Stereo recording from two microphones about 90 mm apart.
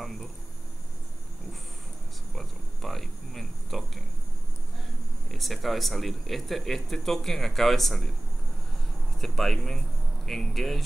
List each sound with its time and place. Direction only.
2.3 s cricket: centre (ahead or behind)
5.3 s speech: centre (ahead or behind)
9.2 s speech: 5° left (ahead or behind)